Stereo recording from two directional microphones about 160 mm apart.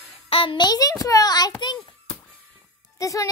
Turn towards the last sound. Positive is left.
turn(degrees=20)  # may be behind; listen again after turning